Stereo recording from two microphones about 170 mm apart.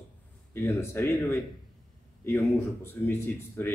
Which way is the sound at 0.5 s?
15° left (ahead or behind).